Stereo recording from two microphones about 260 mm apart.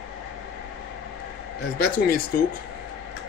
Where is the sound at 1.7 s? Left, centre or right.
Left.